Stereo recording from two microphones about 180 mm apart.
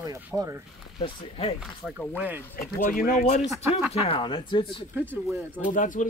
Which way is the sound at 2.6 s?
50° left (ahead or behind).